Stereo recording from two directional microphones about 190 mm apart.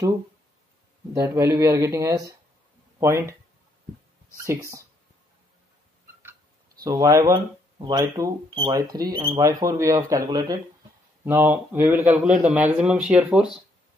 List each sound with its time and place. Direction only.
1.1 s a man's voice: 15° right (ahead or behind)
4.4 s a man's voice: 15° right (ahead or behind)
6.8 s a man's voice: 20° right (ahead or behind)